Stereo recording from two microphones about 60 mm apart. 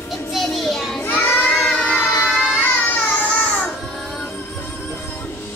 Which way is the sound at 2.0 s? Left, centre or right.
Left.